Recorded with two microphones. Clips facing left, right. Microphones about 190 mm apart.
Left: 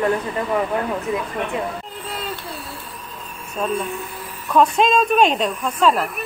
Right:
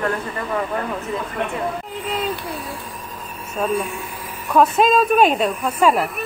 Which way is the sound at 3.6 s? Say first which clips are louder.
Right 1 dB; 10° right (ahead or behind).